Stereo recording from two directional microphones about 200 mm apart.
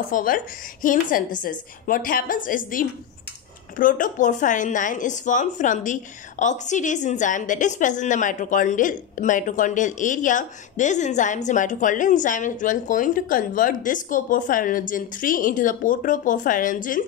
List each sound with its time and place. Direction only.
0.1 s a woman's voice: 45° left (ahead or behind)